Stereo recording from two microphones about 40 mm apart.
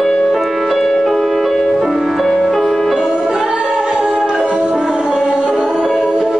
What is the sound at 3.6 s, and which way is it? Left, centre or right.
Music, centre.